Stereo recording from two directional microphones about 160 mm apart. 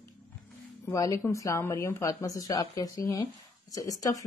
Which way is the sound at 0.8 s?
20° left (ahead or behind).